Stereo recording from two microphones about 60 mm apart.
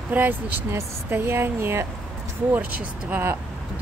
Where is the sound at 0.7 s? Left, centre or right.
Right.